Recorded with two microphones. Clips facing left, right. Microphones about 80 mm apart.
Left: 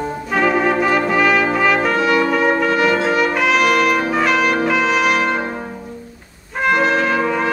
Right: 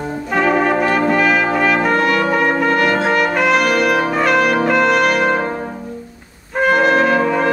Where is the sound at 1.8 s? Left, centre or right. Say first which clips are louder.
Right 1 dB; right.